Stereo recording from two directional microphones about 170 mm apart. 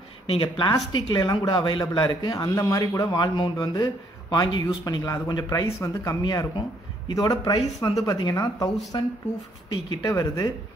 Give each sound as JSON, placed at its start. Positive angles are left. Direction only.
{"t": 0.3, "sound": "a man's voice", "side_deg": 30}